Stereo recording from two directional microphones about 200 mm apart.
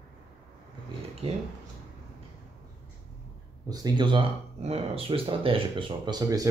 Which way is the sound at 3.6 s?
20° right (ahead or behind).